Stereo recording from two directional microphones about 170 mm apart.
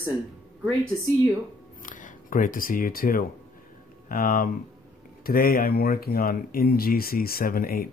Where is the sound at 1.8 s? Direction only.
50° left (ahead or behind).